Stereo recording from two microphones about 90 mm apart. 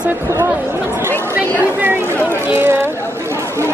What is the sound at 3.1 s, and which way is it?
Chatter, 30° right (ahead or behind).